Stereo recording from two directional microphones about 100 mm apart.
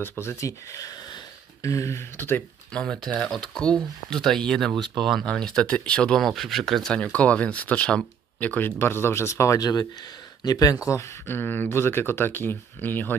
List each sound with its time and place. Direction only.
0.2 s speech: 30° left (ahead or behind)
2.7 s speech: 5° left (ahead or behind)